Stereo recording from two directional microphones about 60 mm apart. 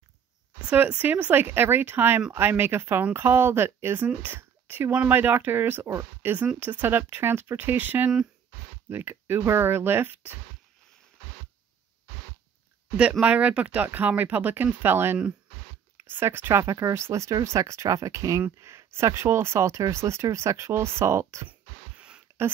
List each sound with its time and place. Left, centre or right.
0.9 s speech: right
13.2 s speech: right
21.5 s a sound: centre